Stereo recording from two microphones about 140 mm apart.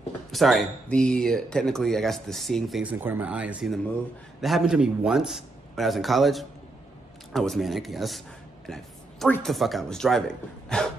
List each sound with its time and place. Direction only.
0.3 s speech: centre (ahead or behind)
2.8 s speech: 10° right (ahead or behind)
8.6 s a sound: 5° left (ahead or behind)
9.3 s speech: centre (ahead or behind)